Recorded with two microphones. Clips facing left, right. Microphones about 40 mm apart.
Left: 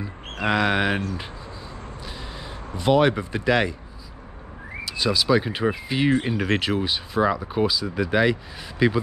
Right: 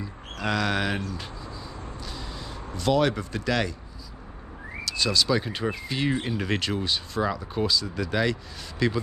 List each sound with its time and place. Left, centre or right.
0.0 s speech: left
2.7 s speech: left
4.8 s speech: centre